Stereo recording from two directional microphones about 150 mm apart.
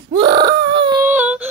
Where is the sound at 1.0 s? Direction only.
10° right (ahead or behind).